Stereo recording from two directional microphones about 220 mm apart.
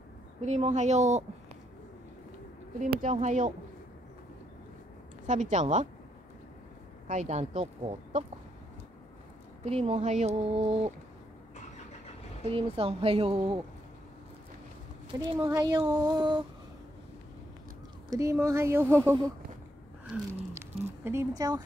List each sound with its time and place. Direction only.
0.5 s speech: 30° right (ahead or behind)
2.8 s speech: 35° right (ahead or behind)
5.2 s speech: 35° right (ahead or behind)
7.1 s speech: 30° right (ahead or behind)
9.7 s speech: 30° right (ahead or behind)
12.4 s speech: 25° right (ahead or behind)
15.0 s a sound: 15° right (ahead or behind)
15.8 s speech: 20° right (ahead or behind)
18.1 s a sound: 15° right (ahead or behind)
20.5 s speech: 10° right (ahead or behind)